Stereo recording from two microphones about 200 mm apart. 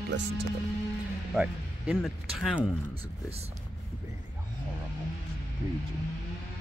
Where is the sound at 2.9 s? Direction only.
30° right (ahead or behind).